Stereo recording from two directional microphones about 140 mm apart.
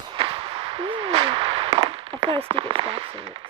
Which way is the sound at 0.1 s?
40° right (ahead or behind).